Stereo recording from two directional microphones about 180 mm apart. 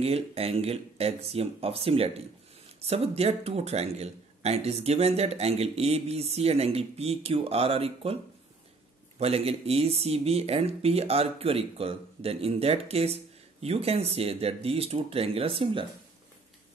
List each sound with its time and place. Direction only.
0.0 s speech: 35° right (ahead or behind)
9.2 s speech: 35° right (ahead or behind)